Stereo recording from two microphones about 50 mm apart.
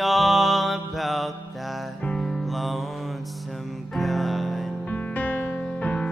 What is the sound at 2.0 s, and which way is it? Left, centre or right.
Music, centre.